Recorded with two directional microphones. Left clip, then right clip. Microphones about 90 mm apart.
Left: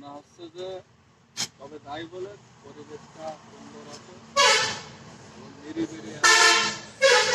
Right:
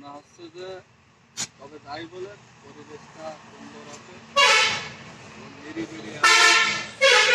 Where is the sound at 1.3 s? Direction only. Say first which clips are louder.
Left 1 dB; 15° left (ahead or behind).